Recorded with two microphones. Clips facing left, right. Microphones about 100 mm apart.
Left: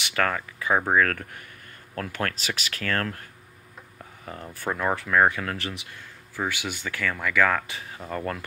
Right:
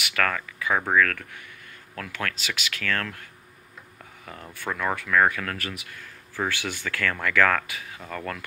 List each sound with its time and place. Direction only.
0.0 s speech: 25° left (ahead or behind)
4.3 s speech: 30° left (ahead or behind); by 7.6 s 10° left (ahead or behind)
7.6 s speech: 30° left (ahead or behind)